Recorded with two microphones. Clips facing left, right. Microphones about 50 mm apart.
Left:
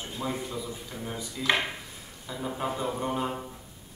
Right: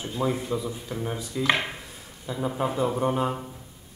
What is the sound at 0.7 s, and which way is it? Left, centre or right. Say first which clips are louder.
Speech: right 5 dB; centre.